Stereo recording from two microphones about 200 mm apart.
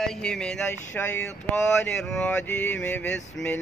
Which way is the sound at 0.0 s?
5° left (ahead or behind).